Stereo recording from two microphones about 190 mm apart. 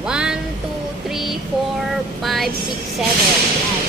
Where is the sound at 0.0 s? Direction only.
5° right (ahead or behind).